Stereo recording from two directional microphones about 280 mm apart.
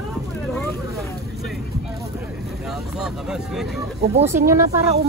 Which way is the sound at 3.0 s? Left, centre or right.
Centre.